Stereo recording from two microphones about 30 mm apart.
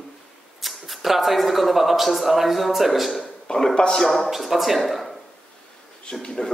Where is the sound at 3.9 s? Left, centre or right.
Centre.